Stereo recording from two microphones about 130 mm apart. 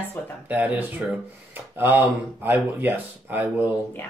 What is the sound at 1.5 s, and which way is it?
Rub, 15° right (ahead or behind).